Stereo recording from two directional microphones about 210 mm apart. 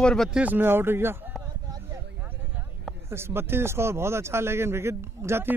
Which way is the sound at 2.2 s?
10° right (ahead or behind).